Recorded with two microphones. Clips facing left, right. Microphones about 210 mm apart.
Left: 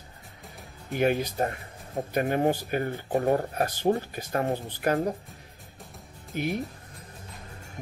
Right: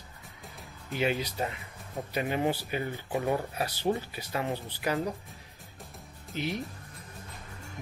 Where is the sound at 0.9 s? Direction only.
50° left (ahead or behind).